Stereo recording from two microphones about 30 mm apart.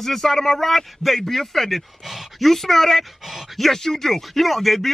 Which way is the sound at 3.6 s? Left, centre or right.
Centre.